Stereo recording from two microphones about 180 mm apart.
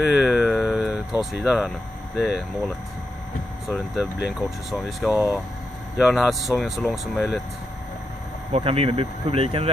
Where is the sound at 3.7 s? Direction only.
Centre (ahead or behind).